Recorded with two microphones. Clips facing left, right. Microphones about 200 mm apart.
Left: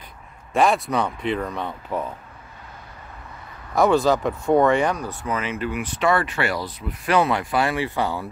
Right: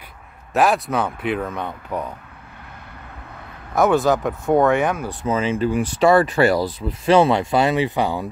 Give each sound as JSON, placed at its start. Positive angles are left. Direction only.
{"t": 0.5, "sound": "speech", "side_deg": 0}
{"t": 3.7, "sound": "speech", "side_deg": 0}
{"t": 5.0, "sound": "speech", "side_deg": -25}